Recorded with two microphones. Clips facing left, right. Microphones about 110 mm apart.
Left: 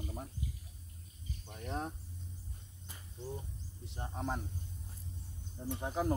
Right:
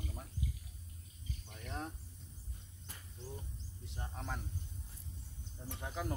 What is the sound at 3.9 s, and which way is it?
Speech, 25° left (ahead or behind).